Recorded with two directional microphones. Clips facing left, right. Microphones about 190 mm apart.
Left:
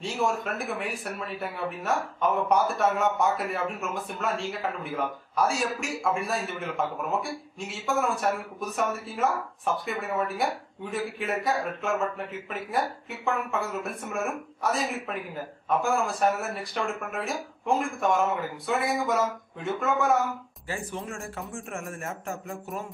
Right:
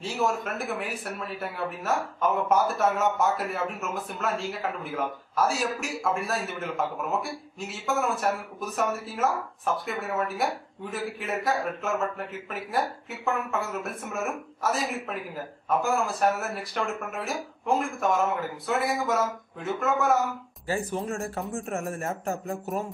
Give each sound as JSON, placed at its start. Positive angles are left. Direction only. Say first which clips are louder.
{"t": 0.0, "sound": "speech", "louder": "even", "side_deg": 0}
{"t": 20.6, "sound": "speech", "louder": "right 5 dB", "side_deg": -40}